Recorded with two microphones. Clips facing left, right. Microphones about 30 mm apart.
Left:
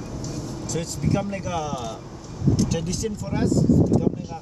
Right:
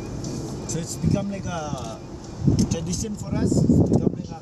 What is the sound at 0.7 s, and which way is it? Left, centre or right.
Speech, left.